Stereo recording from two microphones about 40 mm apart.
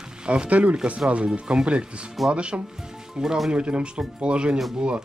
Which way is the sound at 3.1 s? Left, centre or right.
Centre.